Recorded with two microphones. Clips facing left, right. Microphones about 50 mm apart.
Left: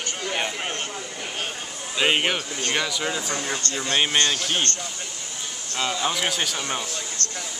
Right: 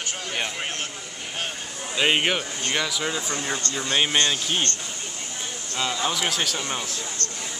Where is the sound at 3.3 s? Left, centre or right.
Centre.